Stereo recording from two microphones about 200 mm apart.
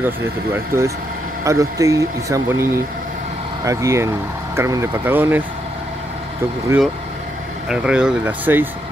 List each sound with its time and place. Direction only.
0.0 s speech: 10° right (ahead or behind)
7.6 s speech: 5° right (ahead or behind)